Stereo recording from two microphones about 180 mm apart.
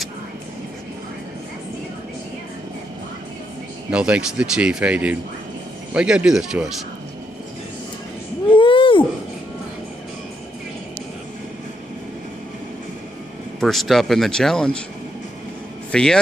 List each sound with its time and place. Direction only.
3.9 s speech: 5° right (ahead or behind)
8.5 s a sound: 30° left (ahead or behind)
13.6 s speech: centre (ahead or behind)
15.9 s speech: 5° left (ahead or behind)